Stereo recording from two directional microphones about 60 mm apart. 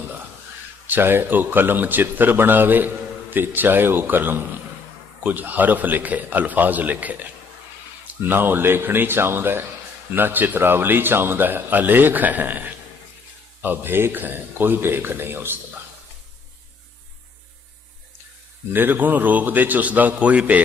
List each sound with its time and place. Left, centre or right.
0.8 s a man's voice: right
18.7 s a man's voice: right